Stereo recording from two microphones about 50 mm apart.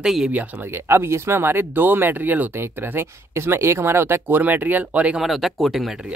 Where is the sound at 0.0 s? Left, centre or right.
Centre.